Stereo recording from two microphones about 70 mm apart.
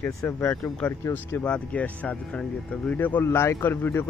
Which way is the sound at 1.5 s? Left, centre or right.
Centre.